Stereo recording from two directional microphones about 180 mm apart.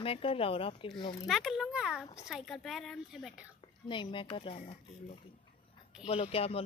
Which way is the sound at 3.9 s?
25° left (ahead or behind).